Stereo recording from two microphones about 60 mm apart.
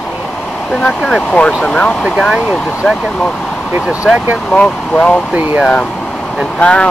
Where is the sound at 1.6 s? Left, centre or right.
Left.